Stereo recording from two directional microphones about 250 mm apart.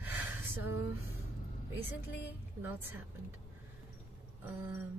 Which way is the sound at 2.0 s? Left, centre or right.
Left.